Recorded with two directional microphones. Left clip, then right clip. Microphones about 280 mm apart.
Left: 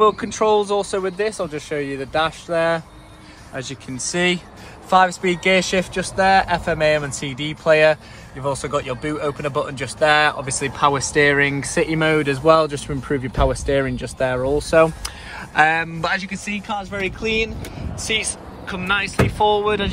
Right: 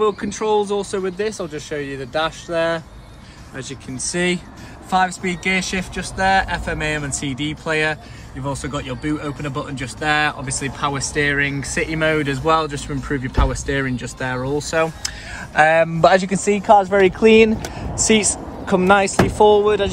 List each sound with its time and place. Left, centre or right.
0.0 s speech: centre
3.5 s speech: centre
16.1 s speech: right
18.7 s speech: centre